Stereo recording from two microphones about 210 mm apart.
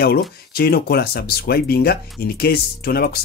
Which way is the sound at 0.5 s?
50° left (ahead or behind).